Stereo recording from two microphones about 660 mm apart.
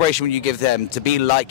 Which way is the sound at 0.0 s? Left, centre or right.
Left.